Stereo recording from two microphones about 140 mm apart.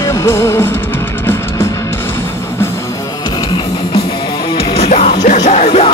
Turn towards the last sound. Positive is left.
turn(degrees=50)  # may be behind; listen again after turning